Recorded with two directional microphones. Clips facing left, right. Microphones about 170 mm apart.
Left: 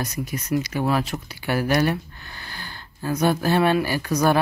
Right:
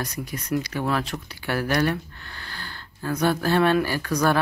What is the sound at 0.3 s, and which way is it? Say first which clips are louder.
Speech: left 2 dB; 10° left (ahead or behind).